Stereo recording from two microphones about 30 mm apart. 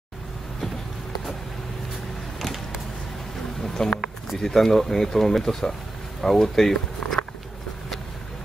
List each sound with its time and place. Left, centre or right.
3.7 s speech: centre